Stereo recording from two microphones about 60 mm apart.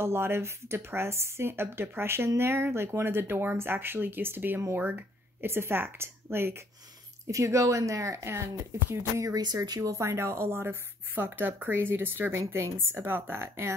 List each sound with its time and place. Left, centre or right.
0.0 s speech: right
7.2 s speech: right
8.3 s speech: right
9.2 s speech: right
9.9 s speech: right
12.4 s speech: right